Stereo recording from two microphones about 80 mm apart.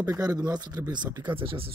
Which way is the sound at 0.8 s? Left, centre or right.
Right.